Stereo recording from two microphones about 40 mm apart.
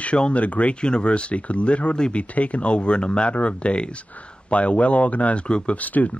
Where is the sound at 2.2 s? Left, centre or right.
Left.